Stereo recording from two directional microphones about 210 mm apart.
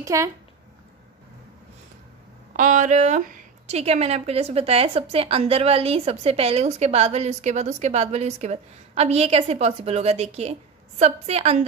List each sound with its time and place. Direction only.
0.0 s a child's voice: 15° right (ahead or behind)
2.5 s speech: 35° right (ahead or behind)